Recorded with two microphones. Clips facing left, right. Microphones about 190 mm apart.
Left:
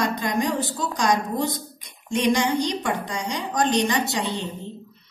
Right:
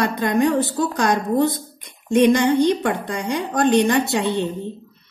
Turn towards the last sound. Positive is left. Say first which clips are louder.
# right 6 dB
turn(degrees=-60)  # may be behind; listen again after turning